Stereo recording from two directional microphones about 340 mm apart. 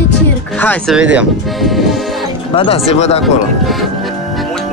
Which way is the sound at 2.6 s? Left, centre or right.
Centre.